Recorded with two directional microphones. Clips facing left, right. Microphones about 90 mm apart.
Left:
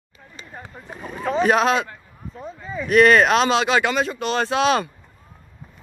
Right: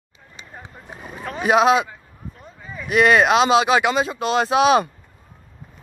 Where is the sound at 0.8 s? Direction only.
10° right (ahead or behind).